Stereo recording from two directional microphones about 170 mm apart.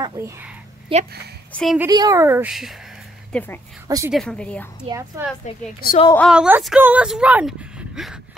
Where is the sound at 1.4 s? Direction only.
5° left (ahead or behind).